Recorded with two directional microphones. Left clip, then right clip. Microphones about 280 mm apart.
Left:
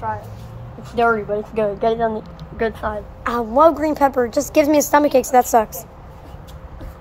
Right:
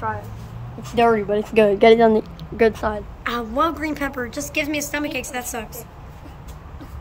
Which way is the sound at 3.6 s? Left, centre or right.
Centre.